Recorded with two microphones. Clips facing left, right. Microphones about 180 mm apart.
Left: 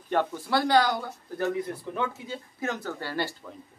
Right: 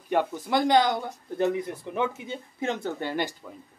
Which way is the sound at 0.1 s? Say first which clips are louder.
Right 1 dB; 15° right (ahead or behind).